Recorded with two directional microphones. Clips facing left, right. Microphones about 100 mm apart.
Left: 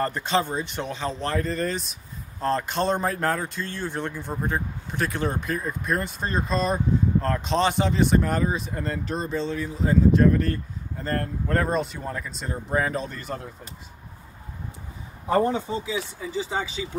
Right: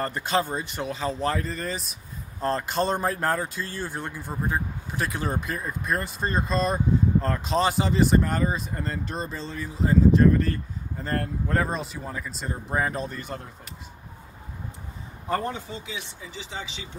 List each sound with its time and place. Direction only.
0.0 s speech: 5° right (ahead or behind)
15.2 s speech: 15° left (ahead or behind)